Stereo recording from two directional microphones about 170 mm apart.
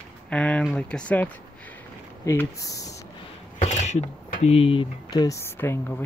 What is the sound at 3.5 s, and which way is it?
Speech, 40° left (ahead or behind).